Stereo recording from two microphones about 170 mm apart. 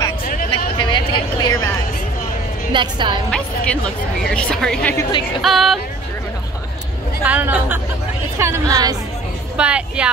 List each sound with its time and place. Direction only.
0.2 s a sound: 55° left (ahead or behind)
0.7 s a sound: 30° left (ahead or behind)
2.7 s a woman's voice: 30° right (ahead or behind)
3.3 s a woman's voice: 5° left (ahead or behind)
7.2 s a woman's voice: 10° right (ahead or behind)
9.6 s speech: 5° right (ahead or behind)